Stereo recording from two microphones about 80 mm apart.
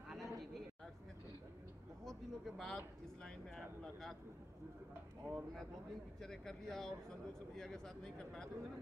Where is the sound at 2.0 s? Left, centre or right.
Centre.